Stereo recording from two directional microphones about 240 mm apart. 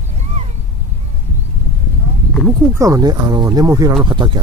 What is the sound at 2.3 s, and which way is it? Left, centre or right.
Speech, centre.